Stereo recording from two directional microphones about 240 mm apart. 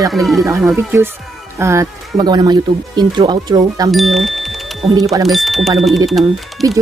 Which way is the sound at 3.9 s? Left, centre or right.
Centre.